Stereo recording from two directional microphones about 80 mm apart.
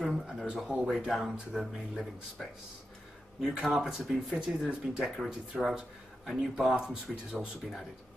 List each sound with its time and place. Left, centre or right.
0.0 s speech: centre